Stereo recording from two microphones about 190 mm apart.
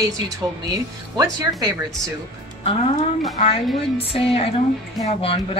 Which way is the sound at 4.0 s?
30° left (ahead or behind).